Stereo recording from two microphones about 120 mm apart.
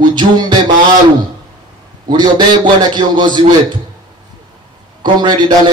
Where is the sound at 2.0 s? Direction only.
40° right (ahead or behind).